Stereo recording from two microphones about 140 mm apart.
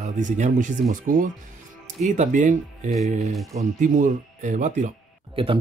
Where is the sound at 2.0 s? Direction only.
60° right (ahead or behind).